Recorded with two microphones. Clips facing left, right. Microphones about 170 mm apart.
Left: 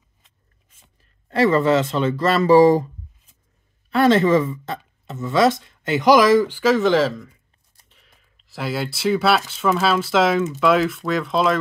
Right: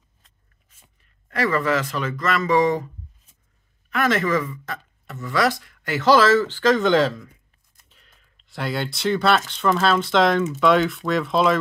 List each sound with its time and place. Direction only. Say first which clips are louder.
1.3 s speech: left 5 dB; 25° left (ahead or behind)
3.9 s speech: left 6 dB; 30° left (ahead or behind); by 11.5 s centre (ahead or behind)